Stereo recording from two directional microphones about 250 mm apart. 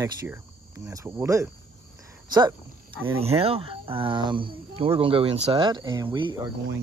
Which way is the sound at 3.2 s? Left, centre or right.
Right.